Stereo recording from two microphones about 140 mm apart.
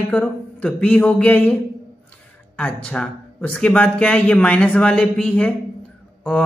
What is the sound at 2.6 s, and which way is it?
A man's voice, 10° left (ahead or behind).